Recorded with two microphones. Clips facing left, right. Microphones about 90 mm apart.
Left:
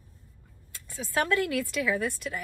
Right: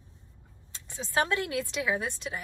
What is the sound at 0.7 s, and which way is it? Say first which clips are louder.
A woman's voice: even; 20° right (ahead or behind).